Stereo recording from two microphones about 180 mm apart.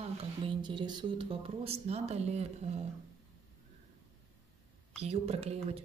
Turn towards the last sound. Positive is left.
turn(degrees=-35)  # may be behind; listen again after turning